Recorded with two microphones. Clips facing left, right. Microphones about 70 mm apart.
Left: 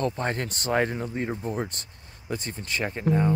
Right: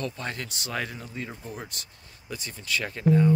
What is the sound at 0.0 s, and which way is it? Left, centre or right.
Speech, left.